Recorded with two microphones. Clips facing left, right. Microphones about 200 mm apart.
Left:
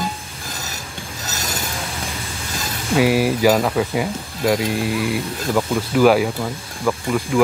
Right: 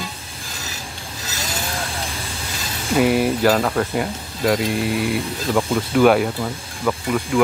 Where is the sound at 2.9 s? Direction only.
5° left (ahead or behind).